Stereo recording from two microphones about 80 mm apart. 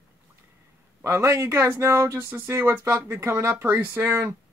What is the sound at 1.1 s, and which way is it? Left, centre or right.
Speech, right.